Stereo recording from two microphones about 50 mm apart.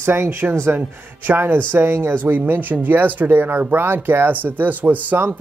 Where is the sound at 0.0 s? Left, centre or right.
Right.